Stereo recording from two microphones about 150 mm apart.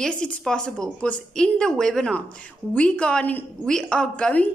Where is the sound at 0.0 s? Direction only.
5° left (ahead or behind).